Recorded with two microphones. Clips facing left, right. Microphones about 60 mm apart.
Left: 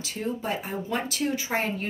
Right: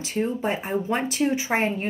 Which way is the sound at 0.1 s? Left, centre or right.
Right.